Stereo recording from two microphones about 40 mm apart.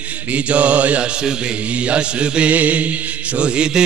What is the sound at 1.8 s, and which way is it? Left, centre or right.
Chant, right.